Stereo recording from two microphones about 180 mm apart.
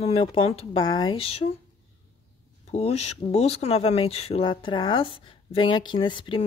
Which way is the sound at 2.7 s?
35° left (ahead or behind).